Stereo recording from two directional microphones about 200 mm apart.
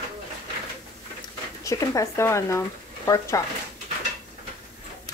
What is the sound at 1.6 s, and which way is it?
Speech, 15° left (ahead or behind).